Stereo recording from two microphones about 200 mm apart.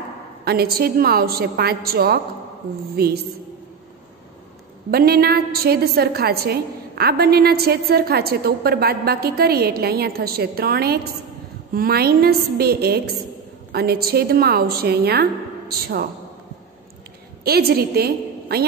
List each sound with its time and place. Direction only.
0.5 s a woman's voice: 50° right (ahead or behind)
4.9 s a woman's voice: 50° right (ahead or behind)
17.4 s a woman's voice: 50° right (ahead or behind)